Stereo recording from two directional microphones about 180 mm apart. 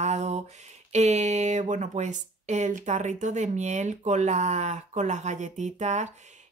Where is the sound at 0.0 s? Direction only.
40° right (ahead or behind).